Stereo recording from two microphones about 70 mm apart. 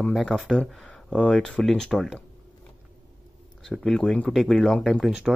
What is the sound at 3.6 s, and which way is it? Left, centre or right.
Speech, centre.